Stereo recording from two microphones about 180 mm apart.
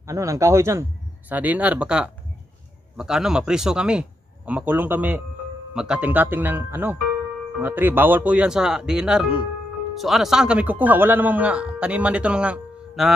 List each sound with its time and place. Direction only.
0.0 s a man's voice: 15° right (ahead or behind)